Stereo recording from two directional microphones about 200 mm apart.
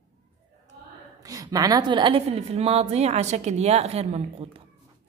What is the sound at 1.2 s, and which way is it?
A woman's voice, 20° right (ahead or behind).